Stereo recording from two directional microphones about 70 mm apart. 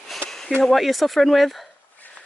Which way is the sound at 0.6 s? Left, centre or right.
Centre.